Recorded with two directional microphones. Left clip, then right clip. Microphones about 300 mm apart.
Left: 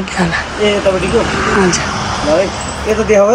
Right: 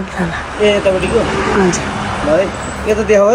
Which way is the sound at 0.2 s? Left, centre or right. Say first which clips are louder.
Even; centre.